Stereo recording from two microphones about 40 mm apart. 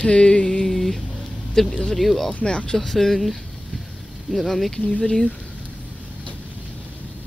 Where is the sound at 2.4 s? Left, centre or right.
Left.